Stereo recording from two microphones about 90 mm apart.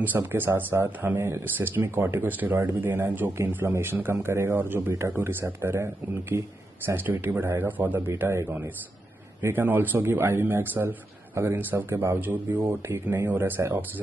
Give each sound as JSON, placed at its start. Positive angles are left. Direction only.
{"t": 0.0, "sound": "speech", "side_deg": -20}
{"t": 8.2, "sound": "speech", "side_deg": -30}